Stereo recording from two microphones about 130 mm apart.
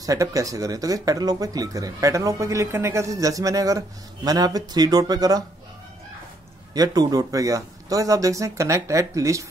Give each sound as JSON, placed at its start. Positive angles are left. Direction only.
{"t": 0.0, "sound": "speech", "side_deg": -25}
{"t": 6.7, "sound": "speech", "side_deg": -30}